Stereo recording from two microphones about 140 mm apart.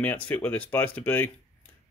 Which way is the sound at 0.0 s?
10° left (ahead or behind).